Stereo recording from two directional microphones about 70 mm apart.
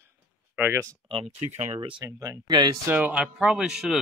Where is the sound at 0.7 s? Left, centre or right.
Right.